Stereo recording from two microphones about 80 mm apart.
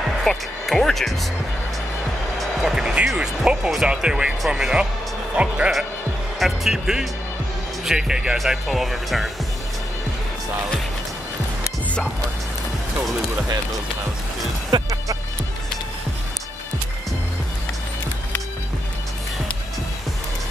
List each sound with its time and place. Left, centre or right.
0.2 s speech: centre
2.6 s speech: centre
14.7 s music: right